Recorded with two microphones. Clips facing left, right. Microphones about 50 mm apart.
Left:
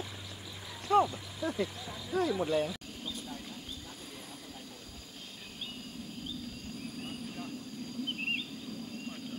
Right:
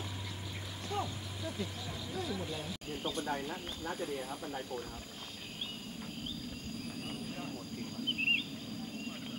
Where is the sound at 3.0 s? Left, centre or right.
Right.